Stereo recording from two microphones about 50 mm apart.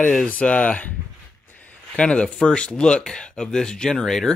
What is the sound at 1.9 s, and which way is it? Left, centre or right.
Speech, left.